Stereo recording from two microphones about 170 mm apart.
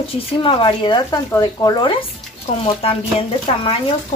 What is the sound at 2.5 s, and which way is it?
Speech, 40° left (ahead or behind).